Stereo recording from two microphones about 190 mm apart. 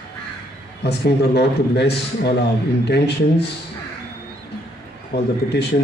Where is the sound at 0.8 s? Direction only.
60° left (ahead or behind).